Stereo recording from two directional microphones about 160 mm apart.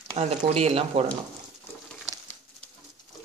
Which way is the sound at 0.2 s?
40° right (ahead or behind).